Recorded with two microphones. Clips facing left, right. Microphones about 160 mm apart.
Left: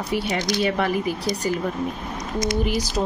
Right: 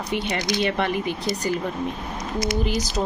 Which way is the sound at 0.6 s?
5° left (ahead or behind).